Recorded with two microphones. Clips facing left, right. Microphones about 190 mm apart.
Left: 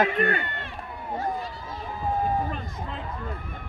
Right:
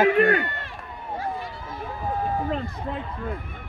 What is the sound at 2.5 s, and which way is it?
Run, 65° right (ahead or behind).